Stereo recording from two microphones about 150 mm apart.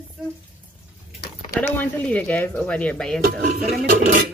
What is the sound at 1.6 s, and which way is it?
Speech, 10° left (ahead or behind).